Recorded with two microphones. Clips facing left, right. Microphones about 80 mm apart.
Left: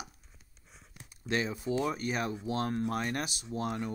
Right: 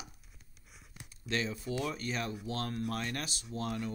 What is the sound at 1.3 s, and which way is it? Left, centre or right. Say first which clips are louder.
Speech: left 4 dB; centre.